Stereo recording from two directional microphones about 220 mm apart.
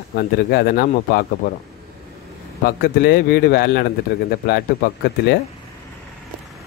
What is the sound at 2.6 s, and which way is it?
Speech, 45° left (ahead or behind).